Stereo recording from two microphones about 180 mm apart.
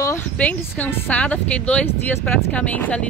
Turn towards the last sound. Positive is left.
turn(degrees=10)  # may be behind; listen again after turning